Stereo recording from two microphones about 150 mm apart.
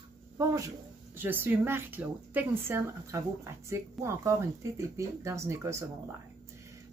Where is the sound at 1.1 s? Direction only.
15° right (ahead or behind).